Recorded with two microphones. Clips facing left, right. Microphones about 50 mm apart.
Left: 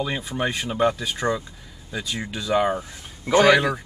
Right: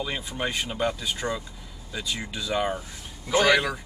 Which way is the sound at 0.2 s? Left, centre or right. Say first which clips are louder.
Left 3 dB; left.